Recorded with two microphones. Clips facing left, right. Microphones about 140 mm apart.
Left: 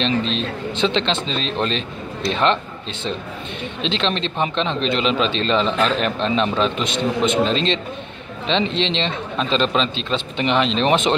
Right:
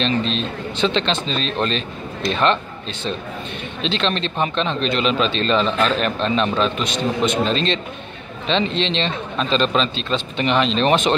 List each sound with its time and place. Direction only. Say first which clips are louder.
0.0 s speech: even; 20° left (ahead or behind)